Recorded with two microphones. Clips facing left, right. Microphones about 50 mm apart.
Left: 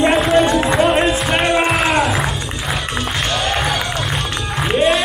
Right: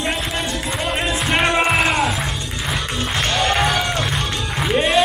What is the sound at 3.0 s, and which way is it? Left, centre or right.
Music, centre.